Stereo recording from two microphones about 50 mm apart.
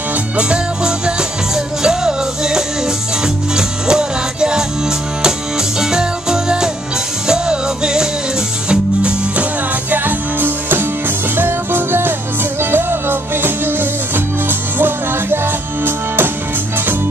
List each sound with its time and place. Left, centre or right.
0.4 s music: centre
5.8 s music: centre
9.8 s music: right